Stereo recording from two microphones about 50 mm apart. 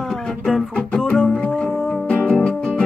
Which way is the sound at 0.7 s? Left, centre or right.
Centre.